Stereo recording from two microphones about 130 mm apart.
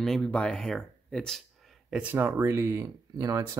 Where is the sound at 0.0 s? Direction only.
5° left (ahead or behind).